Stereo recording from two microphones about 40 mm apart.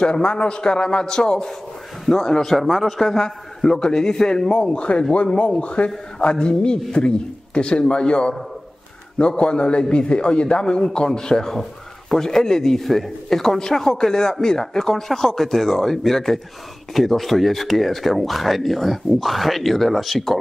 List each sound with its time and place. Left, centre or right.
0.0 s a man's voice: left
2.5 s a man's voice: centre; by 8.4 s left
9.4 s a man's voice: left; by 20.3 s centre